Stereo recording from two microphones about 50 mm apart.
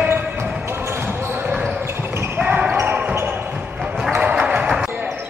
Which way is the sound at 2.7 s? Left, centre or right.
Right.